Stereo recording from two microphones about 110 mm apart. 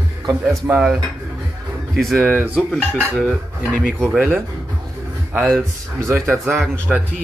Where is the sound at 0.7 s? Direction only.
10° right (ahead or behind).